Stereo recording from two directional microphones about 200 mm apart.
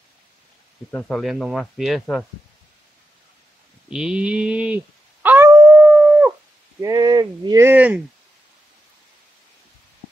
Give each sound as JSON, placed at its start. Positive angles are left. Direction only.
{"t": 0.9, "sound": "speech", "side_deg": 5}
{"t": 3.9, "sound": "howl", "side_deg": -5}
{"t": 6.8, "sound": "speech", "side_deg": -15}